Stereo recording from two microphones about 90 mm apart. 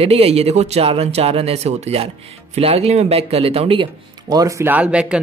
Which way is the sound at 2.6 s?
90° right.